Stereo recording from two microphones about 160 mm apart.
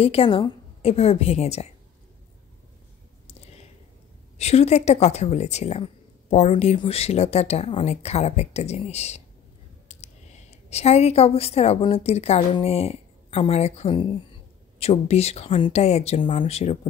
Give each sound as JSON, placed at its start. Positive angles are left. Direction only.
{"t": 0.0, "sound": "a woman's voice", "side_deg": 35}
{"t": 4.4, "sound": "a woman's voice", "side_deg": 40}
{"t": 9.8, "sound": "clicking", "side_deg": 45}
{"t": 10.7, "sound": "a woman's voice", "side_deg": 40}